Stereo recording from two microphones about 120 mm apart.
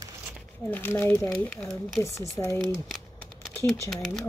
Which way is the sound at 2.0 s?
25° left (ahead or behind).